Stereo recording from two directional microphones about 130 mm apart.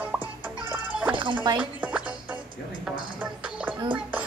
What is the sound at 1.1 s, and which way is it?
Music, 40° right (ahead or behind).